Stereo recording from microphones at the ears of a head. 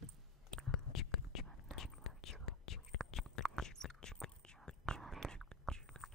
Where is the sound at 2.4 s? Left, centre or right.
Left.